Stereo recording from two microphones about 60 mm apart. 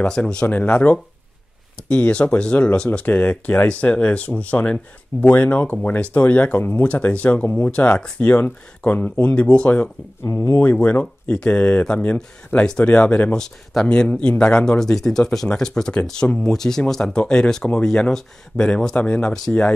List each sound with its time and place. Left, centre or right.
0.0 s speech: centre
0.5 s speech: left
6.6 s speech: left
6.9 s speech: left
13.3 s speech: centre
18.9 s speech: left
19.3 s speech: centre